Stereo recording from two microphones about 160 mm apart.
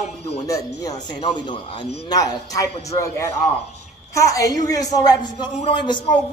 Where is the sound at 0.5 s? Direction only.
25° left (ahead or behind).